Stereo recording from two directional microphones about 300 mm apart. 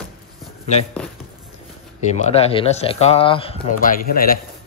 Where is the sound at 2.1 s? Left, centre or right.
Left.